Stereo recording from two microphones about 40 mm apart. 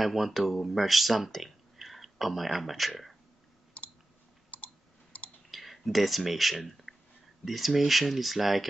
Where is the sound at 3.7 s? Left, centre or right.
Left.